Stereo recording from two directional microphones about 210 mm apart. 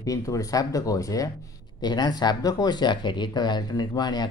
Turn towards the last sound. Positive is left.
turn(degrees=20)  # may be behind; listen again after turning